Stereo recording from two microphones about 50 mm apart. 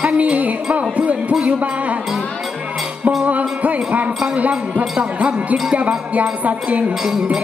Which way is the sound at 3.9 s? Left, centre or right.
Right.